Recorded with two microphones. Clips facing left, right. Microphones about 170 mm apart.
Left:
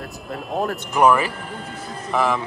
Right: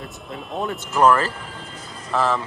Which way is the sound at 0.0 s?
Centre (ahead or behind).